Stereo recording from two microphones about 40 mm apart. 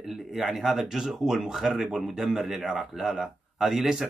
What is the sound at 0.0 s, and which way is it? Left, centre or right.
Speech, centre.